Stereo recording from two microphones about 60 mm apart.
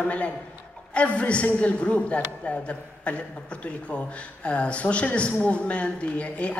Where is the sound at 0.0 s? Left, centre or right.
Left.